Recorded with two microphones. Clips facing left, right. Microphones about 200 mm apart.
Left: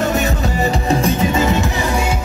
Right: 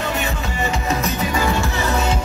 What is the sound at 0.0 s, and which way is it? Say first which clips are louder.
Music: left 6 dB; 40° left (ahead or behind).